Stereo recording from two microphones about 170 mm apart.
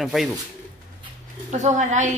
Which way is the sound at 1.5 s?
45° right (ahead or behind).